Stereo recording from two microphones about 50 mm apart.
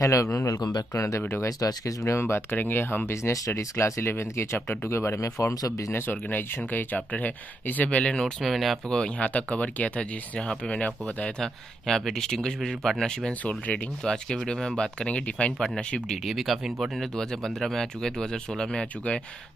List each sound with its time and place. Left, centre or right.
0.0 s speech: left
2.0 s speech: left
2.5 s speech: left
3.1 s speech: left
4.1 s speech: left
5.9 s speech: left
8.2 s speech: centre
8.8 s speech: centre
9.2 s speech: left
11.3 s speech: centre
13.4 s speech: left
14.0 s speech: centre
16.1 s speech: centre
17.2 s speech: centre